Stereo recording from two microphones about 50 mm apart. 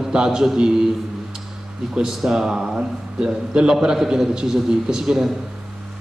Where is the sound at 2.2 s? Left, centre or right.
Centre.